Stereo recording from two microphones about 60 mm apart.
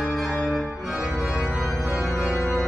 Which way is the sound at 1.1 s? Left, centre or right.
Right.